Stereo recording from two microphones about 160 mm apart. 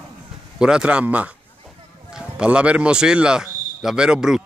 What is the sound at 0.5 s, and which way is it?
A man's voice, 5° right (ahead or behind).